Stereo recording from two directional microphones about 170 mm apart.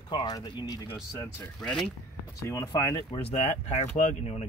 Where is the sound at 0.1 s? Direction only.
25° left (ahead or behind).